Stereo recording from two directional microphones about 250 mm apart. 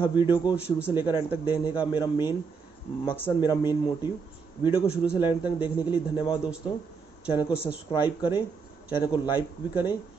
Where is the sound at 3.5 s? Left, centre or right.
Centre.